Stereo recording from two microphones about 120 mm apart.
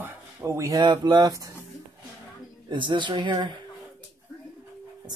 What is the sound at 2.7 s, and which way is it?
Speech, 40° right (ahead or behind).